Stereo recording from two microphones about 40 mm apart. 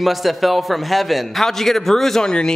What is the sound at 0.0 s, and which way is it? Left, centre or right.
A man's voice, centre.